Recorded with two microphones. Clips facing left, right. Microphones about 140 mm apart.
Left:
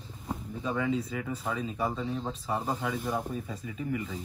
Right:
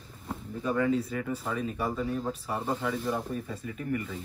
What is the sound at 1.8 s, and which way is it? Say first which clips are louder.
Speech: right 1 dB; 25° left (ahead or behind).